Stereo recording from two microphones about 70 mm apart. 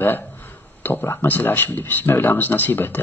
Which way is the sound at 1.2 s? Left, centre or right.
Left.